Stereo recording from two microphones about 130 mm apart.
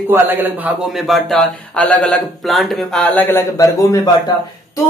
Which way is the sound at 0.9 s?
Centre (ahead or behind).